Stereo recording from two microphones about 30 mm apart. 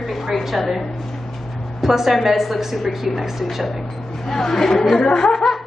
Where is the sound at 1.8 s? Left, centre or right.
Centre.